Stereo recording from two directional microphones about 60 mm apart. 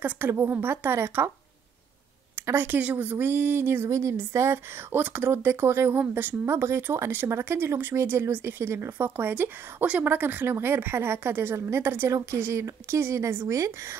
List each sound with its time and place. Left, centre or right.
0.0 s speech: right
2.3 s speech: right
4.9 s speech: right
12.1 s speech: right
13.5 s speech: right